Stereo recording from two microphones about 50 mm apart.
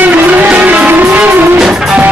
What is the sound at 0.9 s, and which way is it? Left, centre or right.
Vehicle, right.